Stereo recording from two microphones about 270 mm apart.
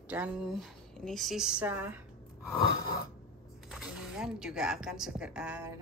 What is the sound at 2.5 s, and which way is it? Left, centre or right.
Gasp, left.